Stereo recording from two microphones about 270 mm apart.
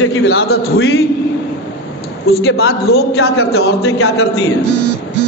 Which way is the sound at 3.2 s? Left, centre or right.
Left.